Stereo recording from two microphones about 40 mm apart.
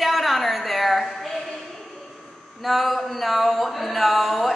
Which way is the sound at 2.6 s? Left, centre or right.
Centre.